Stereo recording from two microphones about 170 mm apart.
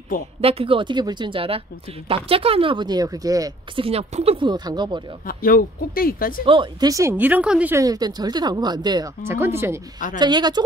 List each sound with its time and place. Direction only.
0.4 s a woman's voice: 35° right (ahead or behind)
3.8 s a woman's voice: 35° right (ahead or behind)
5.2 s speech: 55° left (ahead or behind)
6.4 s a woman's voice: 30° right (ahead or behind); by 7.7 s 5° right (ahead or behind)
7.7 s a woman's voice: 20° right (ahead or behind)
10.1 s a woman's voice: 25° right (ahead or behind)